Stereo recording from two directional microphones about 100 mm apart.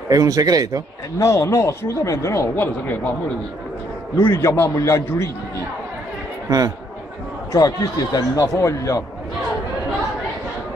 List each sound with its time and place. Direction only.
0.1 s a man's voice: 35° right (ahead or behind)
1.2 s speech: 30° left (ahead or behind)
2.5 s a man's voice: 20° left (ahead or behind)
4.2 s a man's voice: 30° left (ahead or behind)
7.5 s speech: 35° left (ahead or behind)